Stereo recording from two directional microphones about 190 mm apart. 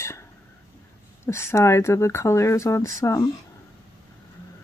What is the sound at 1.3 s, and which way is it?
Speech, 15° left (ahead or behind).